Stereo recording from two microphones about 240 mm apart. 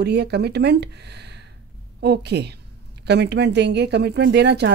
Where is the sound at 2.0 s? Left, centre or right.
Right.